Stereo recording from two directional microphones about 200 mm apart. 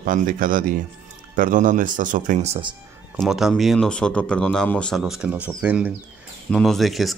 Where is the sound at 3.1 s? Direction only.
Centre (ahead or behind).